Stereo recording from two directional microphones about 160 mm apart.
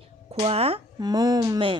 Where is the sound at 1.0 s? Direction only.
25° right (ahead or behind).